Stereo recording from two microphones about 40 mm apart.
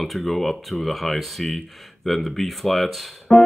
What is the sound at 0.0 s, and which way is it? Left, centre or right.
Speech, centre.